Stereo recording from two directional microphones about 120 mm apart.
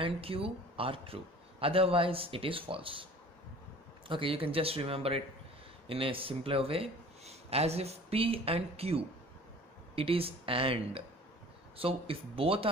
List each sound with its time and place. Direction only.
0.0 s speech: 50° right (ahead or behind)
4.1 s speech: 50° right (ahead or behind)